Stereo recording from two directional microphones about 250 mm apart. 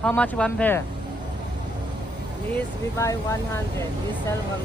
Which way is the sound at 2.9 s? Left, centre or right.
Centre.